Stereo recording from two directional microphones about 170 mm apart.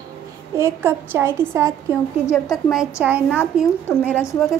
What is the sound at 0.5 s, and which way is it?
A woman's voice, 15° right (ahead or behind).